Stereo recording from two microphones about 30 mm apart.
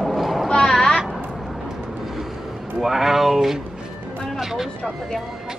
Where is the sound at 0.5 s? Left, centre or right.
Left.